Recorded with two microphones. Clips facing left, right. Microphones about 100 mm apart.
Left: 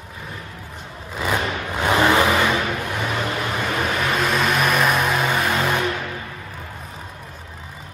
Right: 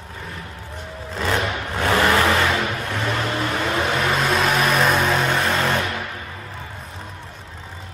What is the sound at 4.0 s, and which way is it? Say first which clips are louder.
Music: even; centre (ahead or behind).